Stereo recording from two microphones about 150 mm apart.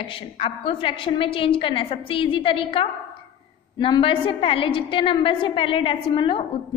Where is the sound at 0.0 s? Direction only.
35° left (ahead or behind).